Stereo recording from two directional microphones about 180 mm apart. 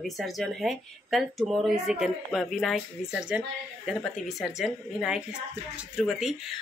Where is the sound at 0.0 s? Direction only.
Centre (ahead or behind).